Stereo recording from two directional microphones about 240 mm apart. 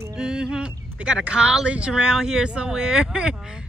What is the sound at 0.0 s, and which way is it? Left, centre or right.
Speech, centre.